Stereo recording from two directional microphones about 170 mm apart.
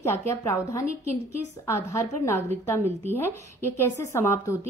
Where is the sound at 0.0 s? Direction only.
15° left (ahead or behind).